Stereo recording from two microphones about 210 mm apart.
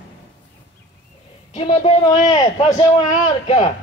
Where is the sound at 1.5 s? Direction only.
30° left (ahead or behind).